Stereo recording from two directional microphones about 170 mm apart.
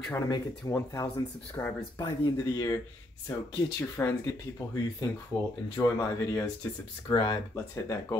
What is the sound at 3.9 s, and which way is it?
Speech, 15° left (ahead or behind).